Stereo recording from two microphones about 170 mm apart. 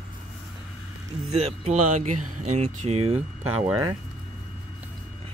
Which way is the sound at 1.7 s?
45° right (ahead or behind).